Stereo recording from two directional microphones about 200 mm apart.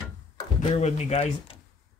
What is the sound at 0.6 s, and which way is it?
Speech, 30° left (ahead or behind).